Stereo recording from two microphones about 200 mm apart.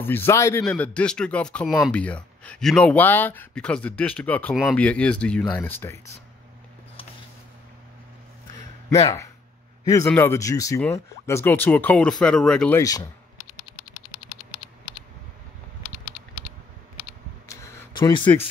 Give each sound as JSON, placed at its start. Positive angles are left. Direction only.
{"t": 0.0, "sound": "a man's voice", "side_deg": 10}
{"t": 9.0, "sound": "a man's voice", "side_deg": 15}
{"t": 17.5, "sound": "a sound", "side_deg": 15}